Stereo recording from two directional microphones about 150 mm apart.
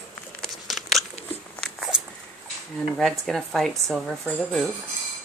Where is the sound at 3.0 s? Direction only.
Centre (ahead or behind).